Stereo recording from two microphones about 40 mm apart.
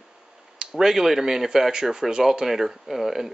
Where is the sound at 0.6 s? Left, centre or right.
Centre.